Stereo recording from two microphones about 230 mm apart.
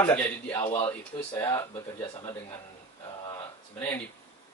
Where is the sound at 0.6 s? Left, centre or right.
Left.